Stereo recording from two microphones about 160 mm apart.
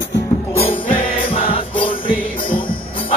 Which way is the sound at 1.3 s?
35° left (ahead or behind).